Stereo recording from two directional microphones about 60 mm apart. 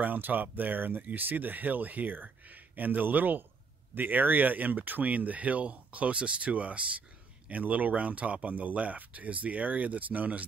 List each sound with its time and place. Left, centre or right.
0.0 s speech: right